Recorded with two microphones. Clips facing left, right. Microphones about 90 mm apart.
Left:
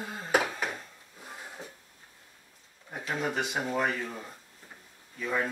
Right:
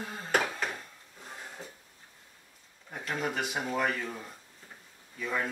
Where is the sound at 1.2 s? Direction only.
5° left (ahead or behind).